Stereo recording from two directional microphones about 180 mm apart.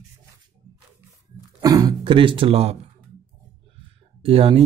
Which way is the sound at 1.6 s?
20° right (ahead or behind).